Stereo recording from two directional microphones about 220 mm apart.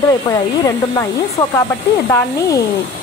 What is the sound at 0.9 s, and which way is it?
Speech, 15° left (ahead or behind).